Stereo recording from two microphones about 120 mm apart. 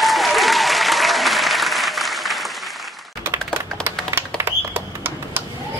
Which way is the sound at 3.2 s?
20° right (ahead or behind).